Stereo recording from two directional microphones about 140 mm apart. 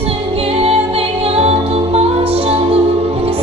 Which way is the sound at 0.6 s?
45° right (ahead or behind).